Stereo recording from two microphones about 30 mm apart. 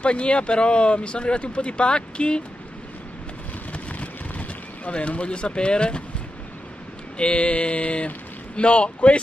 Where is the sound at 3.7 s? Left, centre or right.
Left.